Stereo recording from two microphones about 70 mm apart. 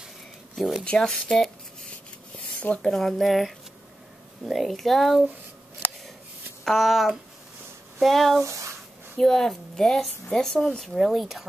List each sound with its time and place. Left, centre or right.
0.6 s a woman's voice: centre
0.8 s speech: centre
2.6 s a woman's voice: centre
6.6 s a woman's voice: centre
8.5 s speech: right
9.1 s a woman's voice: centre